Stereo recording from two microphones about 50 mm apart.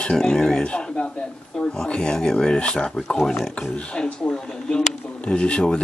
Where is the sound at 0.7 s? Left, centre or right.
Left.